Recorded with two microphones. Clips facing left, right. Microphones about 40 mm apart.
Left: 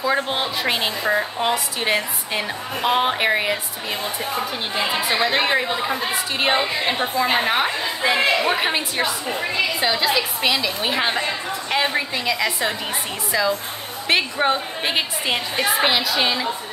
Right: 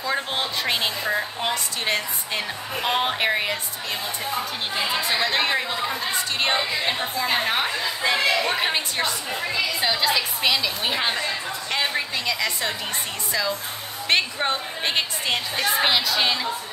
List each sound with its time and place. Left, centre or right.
0.0 s a woman's voice: centre
4.7 s a woman's voice: centre
8.5 s a woman's voice: centre